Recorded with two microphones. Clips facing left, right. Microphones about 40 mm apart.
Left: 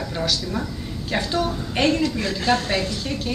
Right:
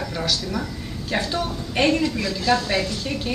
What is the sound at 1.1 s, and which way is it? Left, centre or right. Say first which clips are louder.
Speech: left 1 dB; centre.